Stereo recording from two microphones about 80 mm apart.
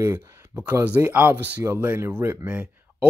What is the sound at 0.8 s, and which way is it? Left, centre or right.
A man's voice, right.